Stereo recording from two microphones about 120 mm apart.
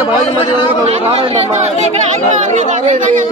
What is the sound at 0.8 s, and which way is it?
Speech, 60° right (ahead or behind).